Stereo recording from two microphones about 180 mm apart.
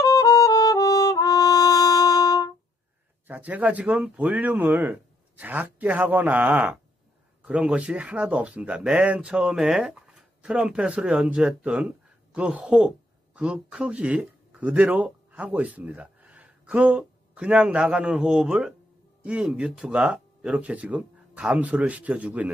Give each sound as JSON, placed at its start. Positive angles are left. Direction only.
{"t": 0.0, "sound": "music", "side_deg": 20}
{"t": 3.3, "sound": "speech", "side_deg": -10}